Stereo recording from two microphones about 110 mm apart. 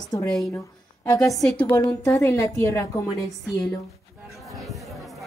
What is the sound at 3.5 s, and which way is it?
Speech, 5° left (ahead or behind).